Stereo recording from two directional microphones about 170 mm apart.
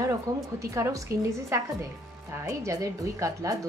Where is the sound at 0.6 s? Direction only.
15° right (ahead or behind).